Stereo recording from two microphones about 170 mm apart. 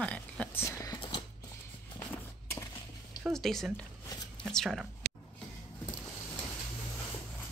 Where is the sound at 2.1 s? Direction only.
15° left (ahead or behind).